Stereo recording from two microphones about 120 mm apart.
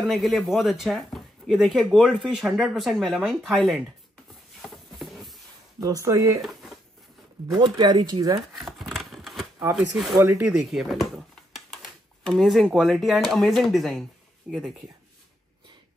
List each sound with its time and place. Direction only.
0.0 s speech: centre (ahead or behind)
4.6 s a sound: centre (ahead or behind)
5.8 s speech: 25° right (ahead or behind)
6.4 s a sound: centre (ahead or behind)
7.4 s speech: 35° right (ahead or behind)
8.5 s scissors: centre (ahead or behind)
10.2 s speech: 10° right (ahead or behind)
11.5 s typewriter: centre (ahead or behind)
13.3 s speech: 5° left (ahead or behind)